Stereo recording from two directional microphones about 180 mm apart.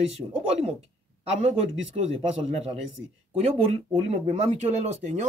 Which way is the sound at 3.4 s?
35° right (ahead or behind).